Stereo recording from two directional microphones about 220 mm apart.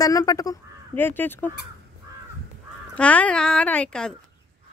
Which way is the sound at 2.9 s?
5° left (ahead or behind).